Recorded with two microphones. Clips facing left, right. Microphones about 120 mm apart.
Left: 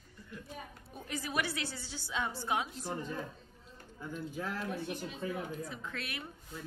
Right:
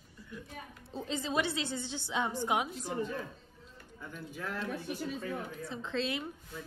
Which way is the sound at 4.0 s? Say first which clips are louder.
Left 3 dB; 10° left (ahead or behind).